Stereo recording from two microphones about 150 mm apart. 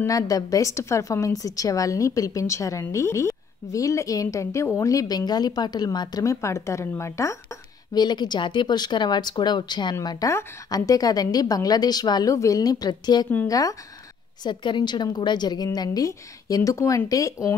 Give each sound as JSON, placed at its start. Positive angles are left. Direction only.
{"t": 0.0, "sound": "a woman's voice", "side_deg": 25}